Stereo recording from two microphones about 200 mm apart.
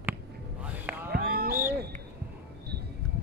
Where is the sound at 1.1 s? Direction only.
50° right (ahead or behind).